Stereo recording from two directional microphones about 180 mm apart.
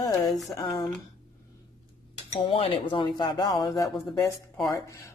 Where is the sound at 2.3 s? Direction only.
30° left (ahead or behind).